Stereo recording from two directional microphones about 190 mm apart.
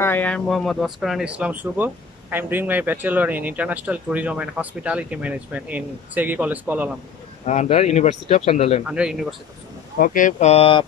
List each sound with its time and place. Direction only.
0.0 s speech: 10° left (ahead or behind); by 6.9 s 10° right (ahead or behind)
7.4 s speech: 35° left (ahead or behind)
8.8 s speech: 5° right (ahead or behind)
9.9 s speech: 45° left (ahead or behind); by 10.9 s 30° left (ahead or behind)